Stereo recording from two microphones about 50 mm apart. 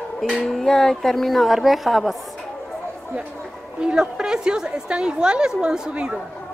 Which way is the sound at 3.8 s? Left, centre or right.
Centre.